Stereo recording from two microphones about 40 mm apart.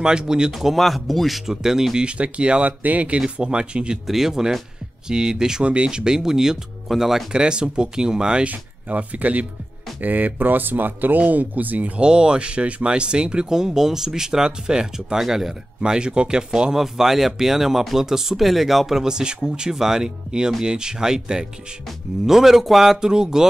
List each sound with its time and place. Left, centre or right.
0.0 s speech: centre
0.5 s speech: centre
1.5 s speech: centre
2.0 s speech: right
2.6 s speech: right
4.1 s speech: centre
5.6 s speech: right; by 7.2 s centre
7.3 s speech: right
8.5 s speech: right
12.0 s speech: right
15.2 s speech: centre
15.8 s speech: right
16.8 s speech: centre